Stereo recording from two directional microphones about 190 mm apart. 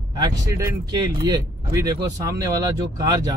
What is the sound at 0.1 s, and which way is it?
Speech, 20° right (ahead or behind).